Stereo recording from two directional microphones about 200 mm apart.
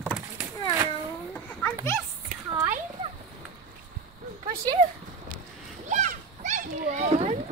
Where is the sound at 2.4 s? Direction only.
15° right (ahead or behind).